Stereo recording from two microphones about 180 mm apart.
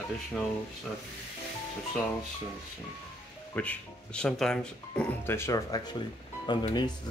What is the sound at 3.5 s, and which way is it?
Speech, 10° left (ahead or behind).